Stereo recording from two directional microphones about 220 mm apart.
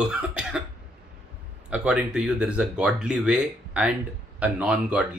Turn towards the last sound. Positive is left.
turn(degrees=-5)  # may be behind; listen again after turning